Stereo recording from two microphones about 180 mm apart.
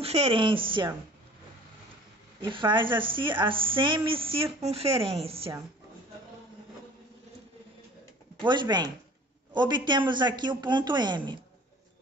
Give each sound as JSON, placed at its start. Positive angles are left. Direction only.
{"t": 0.0, "sound": "a woman's voice", "side_deg": -35}
{"t": 2.4, "sound": "a woman's voice", "side_deg": -25}
{"t": 8.4, "sound": "a woman's voice", "side_deg": -25}